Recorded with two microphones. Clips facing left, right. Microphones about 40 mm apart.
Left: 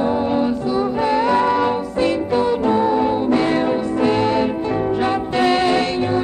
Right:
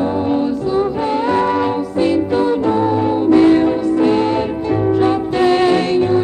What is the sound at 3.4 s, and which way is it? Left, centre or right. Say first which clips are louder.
Music: right 6 dB; centre.